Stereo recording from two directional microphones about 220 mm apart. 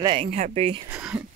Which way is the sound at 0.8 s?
5° right (ahead or behind).